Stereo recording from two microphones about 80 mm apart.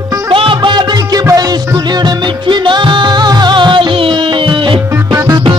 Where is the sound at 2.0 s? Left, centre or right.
Right.